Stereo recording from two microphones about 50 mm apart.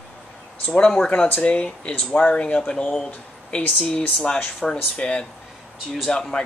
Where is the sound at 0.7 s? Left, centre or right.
Centre.